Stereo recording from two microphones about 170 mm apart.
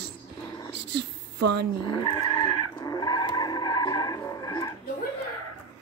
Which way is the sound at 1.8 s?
25° left (ahead or behind).